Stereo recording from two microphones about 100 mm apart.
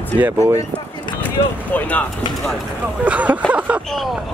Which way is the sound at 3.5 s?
15° right (ahead or behind).